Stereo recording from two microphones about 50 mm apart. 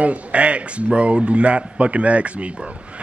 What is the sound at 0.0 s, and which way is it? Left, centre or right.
A man's voice, right.